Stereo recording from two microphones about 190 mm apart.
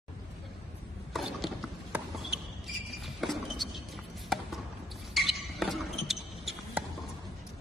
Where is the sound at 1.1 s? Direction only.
Centre (ahead or behind).